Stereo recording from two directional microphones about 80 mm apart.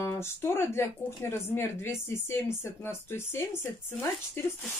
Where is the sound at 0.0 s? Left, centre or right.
Left.